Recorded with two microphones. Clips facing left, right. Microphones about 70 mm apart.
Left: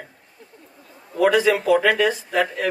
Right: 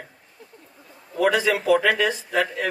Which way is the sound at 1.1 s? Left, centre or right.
Centre.